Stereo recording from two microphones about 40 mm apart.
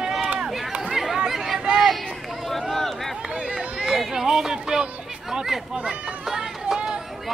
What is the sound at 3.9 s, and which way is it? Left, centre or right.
Chatter, centre.